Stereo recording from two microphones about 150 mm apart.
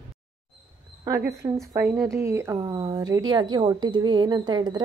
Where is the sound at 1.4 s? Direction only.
35° right (ahead or behind).